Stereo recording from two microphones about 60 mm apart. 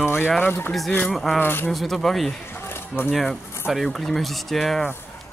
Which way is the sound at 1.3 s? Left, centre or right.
Left.